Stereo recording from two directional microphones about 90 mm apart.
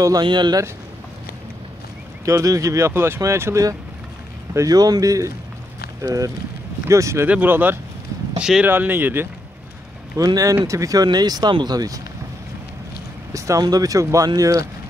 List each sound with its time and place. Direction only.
0.2 s speech: 55° right (ahead or behind)
2.2 s speech: 35° right (ahead or behind)
4.6 s speech: 45° right (ahead or behind)
7.2 s speech: 20° right (ahead or behind)
8.4 s speech: 5° right (ahead or behind)
8.6 s speech: 20° right (ahead or behind)
10.1 s speech: 40° right (ahead or behind)
13.3 s speech: 40° right (ahead or behind)